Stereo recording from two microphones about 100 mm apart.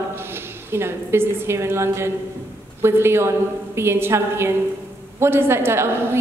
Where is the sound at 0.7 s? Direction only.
25° right (ahead or behind).